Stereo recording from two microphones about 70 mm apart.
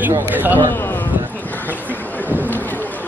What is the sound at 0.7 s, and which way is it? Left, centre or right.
Speech, left.